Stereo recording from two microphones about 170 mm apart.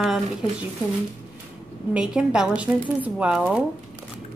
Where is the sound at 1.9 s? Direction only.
5° right (ahead or behind).